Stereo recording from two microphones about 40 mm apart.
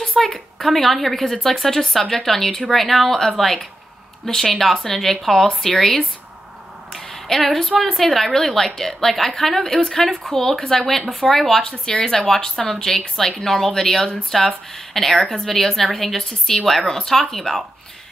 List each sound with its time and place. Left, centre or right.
0.0 s a sound: centre
0.3 s speech: centre
7.2 s speech: centre